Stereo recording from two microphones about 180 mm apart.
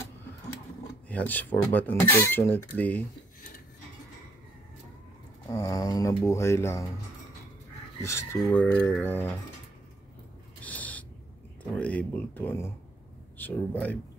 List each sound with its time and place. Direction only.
1.0 s speech: 10° left (ahead or behind)
5.5 s speech: 15° left (ahead or behind)
8.0 s speech: 15° left (ahead or behind)
10.6 s owl: 10° left (ahead or behind)
11.8 s speech: 10° left (ahead or behind)